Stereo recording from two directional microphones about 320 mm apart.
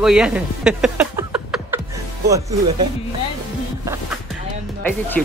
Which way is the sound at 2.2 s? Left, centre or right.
Centre.